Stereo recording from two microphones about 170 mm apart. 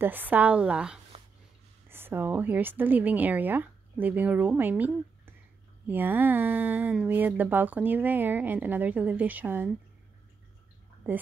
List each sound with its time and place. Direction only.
0.0 s speech: 10° right (ahead or behind)
1.1 s dog: 35° right (ahead or behind)
1.9 s a woman's voice: 15° right (ahead or behind)
11.1 s speech: 10° right (ahead or behind)